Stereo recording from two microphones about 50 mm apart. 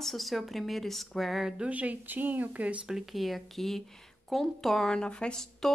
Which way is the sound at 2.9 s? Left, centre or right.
Centre.